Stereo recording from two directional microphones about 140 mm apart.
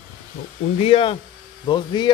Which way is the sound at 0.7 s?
45° left (ahead or behind).